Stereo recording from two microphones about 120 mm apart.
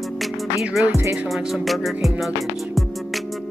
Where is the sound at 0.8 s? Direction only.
20° right (ahead or behind).